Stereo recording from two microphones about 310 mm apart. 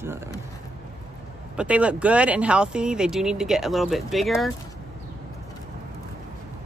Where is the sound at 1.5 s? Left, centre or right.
Centre.